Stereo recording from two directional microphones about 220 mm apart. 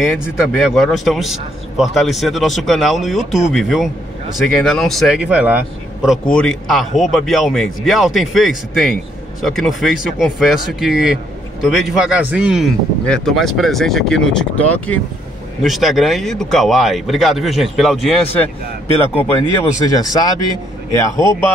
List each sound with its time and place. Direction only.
0.0 s a man's voice: centre (ahead or behind)
6.0 s a man's voice: 5° left (ahead or behind)
19.9 s speech: 15° left (ahead or behind)